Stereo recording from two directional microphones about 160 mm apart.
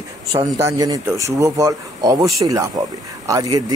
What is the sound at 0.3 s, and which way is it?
Speech, 20° right (ahead or behind).